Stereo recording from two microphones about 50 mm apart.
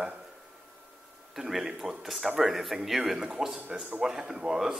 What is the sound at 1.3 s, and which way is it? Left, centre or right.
Speech, centre.